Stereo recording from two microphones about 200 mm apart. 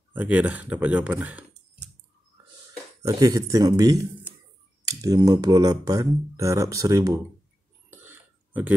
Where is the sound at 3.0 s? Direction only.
15° right (ahead or behind).